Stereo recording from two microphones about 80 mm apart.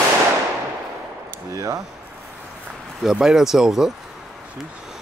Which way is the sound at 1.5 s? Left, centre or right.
Right.